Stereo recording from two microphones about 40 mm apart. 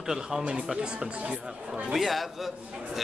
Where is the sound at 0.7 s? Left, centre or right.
Right.